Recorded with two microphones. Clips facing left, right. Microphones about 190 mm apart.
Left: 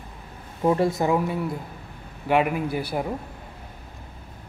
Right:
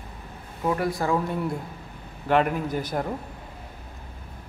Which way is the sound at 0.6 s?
25° left (ahead or behind).